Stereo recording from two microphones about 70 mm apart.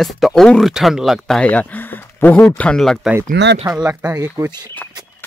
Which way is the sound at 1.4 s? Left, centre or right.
Left.